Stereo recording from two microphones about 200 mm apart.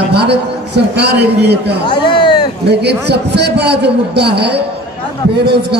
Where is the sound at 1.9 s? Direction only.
25° left (ahead or behind).